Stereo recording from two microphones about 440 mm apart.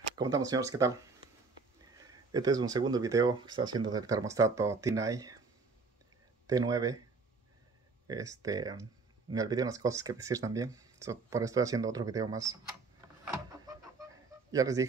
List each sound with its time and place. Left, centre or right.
0.2 s speech: centre
2.0 s speech: centre
6.4 s speech: centre
8.1 s speech: centre
13.2 s vehicle: centre
14.5 s speech: centre